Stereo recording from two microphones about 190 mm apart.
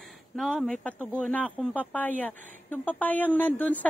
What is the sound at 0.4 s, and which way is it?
A woman's voice, 5° left (ahead or behind).